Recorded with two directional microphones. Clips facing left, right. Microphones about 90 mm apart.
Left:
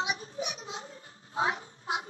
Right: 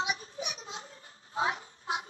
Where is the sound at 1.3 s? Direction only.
30° left (ahead or behind).